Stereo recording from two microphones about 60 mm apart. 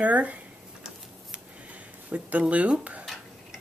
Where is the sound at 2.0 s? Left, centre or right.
Right.